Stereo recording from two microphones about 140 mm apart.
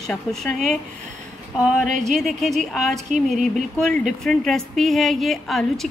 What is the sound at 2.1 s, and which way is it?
Speech, centre (ahead or behind).